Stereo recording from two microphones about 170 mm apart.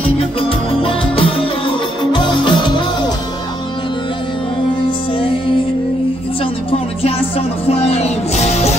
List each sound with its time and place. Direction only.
0.2 s music: 35° left (ahead or behind)
7.0 s music: 35° left (ahead or behind)